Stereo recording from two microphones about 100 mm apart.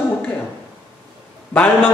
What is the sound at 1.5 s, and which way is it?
Speech, 15° left (ahead or behind).